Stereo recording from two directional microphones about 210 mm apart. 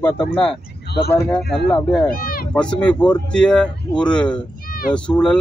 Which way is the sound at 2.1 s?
45° left (ahead or behind).